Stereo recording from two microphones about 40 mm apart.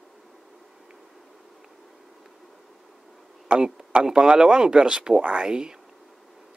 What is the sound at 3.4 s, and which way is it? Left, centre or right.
Speech, centre.